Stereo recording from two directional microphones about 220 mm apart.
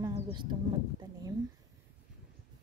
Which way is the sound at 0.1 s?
20° right (ahead or behind).